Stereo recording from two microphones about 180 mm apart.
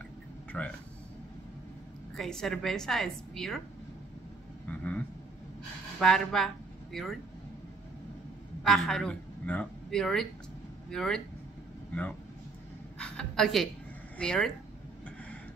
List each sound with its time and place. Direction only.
0.5 s speech: 5° left (ahead or behind)
2.1 s a woman's voice: centre (ahead or behind)
4.6 s vehicle: 10° left (ahead or behind)
5.9 s speech: centre (ahead or behind)
8.6 s a woman's voice: centre (ahead or behind)
13.0 s a sound: 5° left (ahead or behind)
14.1 s speech: 5° left (ahead or behind)